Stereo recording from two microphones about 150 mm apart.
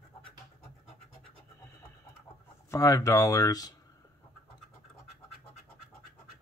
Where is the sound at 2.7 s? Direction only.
20° left (ahead or behind).